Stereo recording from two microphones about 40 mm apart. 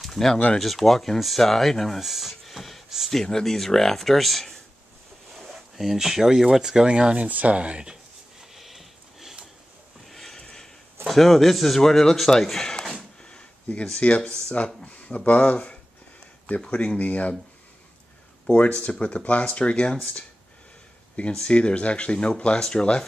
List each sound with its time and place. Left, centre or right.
0.0 s a sound: centre
0.6 s speech: centre
2.0 s a man's voice: centre; by 7.2 s right
7.2 s speech: right
8.4 s sniff: centre
10.0 s a sound: centre
10.4 s a sound: centre
11.1 s a man's voice: centre
13.2 s a sound: left
13.9 s speech: left
18.6 s speech: left
21.3 s speech: left